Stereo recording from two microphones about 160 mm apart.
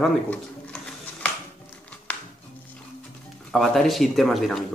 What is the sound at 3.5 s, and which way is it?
Speech, centre (ahead or behind).